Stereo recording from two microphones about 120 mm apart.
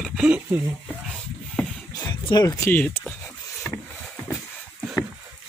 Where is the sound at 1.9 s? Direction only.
30° left (ahead or behind).